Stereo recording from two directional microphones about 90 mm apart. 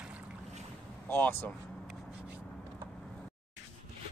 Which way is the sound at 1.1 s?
20° left (ahead or behind).